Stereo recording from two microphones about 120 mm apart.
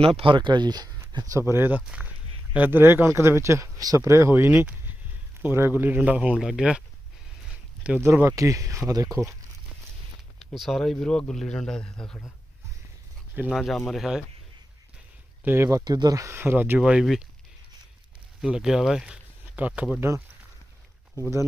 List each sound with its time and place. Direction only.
0.0 s speech: 50° right (ahead or behind); by 1.8 s 20° right (ahead or behind)
1.8 s speech: 10° right (ahead or behind)
7.4 s a sound: 10° right (ahead or behind)
8.0 s speech: 20° right (ahead or behind)
10.4 s a man's voice: centre (ahead or behind)
13.5 s a man's voice: centre (ahead or behind)
15.4 s speech: 20° right (ahead or behind)
15.8 s speech: 35° right (ahead or behind); by 17.3 s 5° right (ahead or behind)
18.4 s speech: 5° right (ahead or behind)